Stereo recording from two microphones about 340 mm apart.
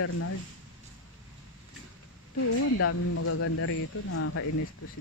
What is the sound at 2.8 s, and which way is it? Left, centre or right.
A man's voice, left.